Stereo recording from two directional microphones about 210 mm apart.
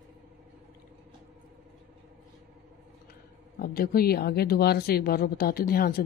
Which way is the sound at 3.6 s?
45° left (ahead or behind).